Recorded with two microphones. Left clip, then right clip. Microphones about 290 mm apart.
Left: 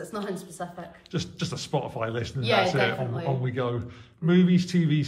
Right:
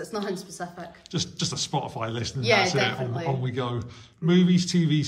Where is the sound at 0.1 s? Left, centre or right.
Centre.